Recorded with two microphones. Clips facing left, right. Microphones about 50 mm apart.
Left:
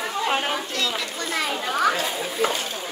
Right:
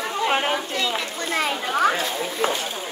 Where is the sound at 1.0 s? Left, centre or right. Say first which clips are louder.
Right 2 dB; right.